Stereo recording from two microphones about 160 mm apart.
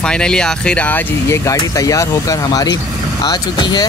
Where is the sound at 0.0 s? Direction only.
5° left (ahead or behind).